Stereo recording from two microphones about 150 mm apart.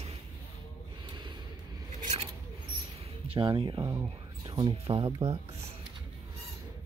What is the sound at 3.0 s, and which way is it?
Music, 35° right (ahead or behind).